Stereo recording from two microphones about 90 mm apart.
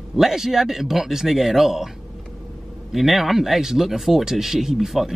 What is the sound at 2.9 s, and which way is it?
Speech, centre (ahead or behind).